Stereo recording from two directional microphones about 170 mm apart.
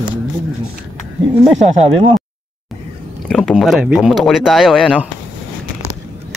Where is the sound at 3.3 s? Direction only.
5° left (ahead or behind).